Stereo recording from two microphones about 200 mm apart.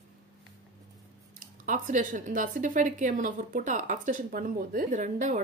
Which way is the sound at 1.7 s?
40° right (ahead or behind).